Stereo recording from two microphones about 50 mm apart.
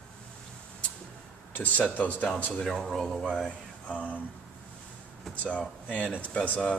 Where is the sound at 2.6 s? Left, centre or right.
Centre.